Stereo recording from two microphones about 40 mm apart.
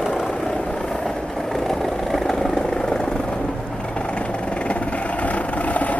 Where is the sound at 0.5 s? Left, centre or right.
Centre.